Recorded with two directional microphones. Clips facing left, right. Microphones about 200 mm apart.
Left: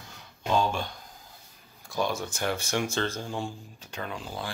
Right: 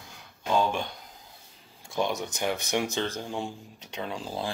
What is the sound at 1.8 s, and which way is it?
Speech, 20° right (ahead or behind).